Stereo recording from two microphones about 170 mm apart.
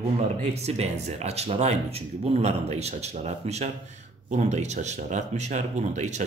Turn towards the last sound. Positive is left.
turn(degrees=-45)  # may be behind; listen again after turning